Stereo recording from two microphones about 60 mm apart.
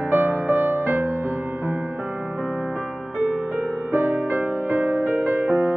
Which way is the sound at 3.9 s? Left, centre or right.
Right.